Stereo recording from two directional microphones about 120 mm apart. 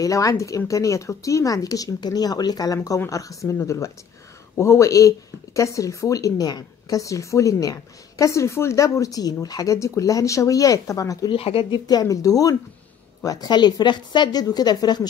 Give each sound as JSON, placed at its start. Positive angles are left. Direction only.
{"t": 0.0, "sound": "speech", "side_deg": 30}
{"t": 11.2, "sound": "speech", "side_deg": 50}
{"t": 11.8, "sound": "a woman's voice", "side_deg": 30}